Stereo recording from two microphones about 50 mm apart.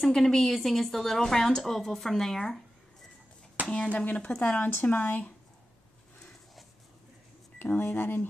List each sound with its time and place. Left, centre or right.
0.0 s a woman's voice: centre
3.7 s speech: left
4.8 s speech: left
7.5 s speech: left